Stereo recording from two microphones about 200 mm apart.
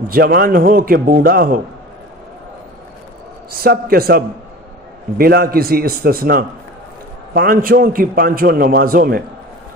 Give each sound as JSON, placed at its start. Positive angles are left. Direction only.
{"t": 0.1, "sound": "a man's voice", "side_deg": -50}
{"t": 3.6, "sound": "a man's voice", "side_deg": -50}